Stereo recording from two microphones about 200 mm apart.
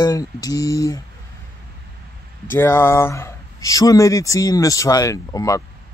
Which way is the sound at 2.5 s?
10° left (ahead or behind).